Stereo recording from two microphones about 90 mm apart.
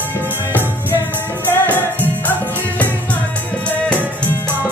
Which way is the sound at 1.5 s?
20° left (ahead or behind).